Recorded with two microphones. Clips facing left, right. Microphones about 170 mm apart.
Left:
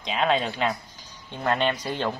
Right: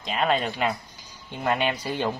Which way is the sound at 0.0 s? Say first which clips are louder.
Even; centre (ahead or behind).